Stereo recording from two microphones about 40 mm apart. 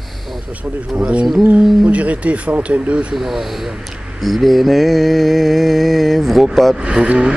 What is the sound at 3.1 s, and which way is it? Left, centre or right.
Speech, centre.